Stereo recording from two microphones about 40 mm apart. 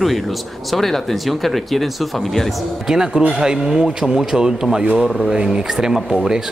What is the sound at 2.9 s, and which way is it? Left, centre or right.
Speech, centre.